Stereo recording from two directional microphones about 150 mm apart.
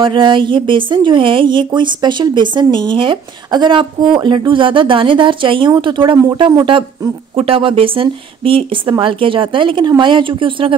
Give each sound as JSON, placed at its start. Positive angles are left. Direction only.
{"t": 0.0, "sound": "speech", "side_deg": -35}